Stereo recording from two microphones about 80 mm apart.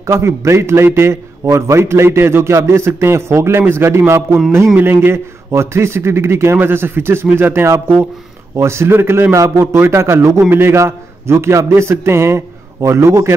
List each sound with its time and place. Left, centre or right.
0.0 s a man's voice: right